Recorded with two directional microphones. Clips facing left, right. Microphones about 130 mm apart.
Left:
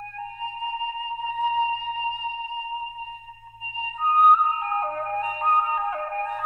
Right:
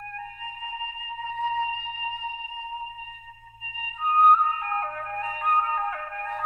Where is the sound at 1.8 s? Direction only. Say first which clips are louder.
Left 5 dB; 35° left (ahead or behind).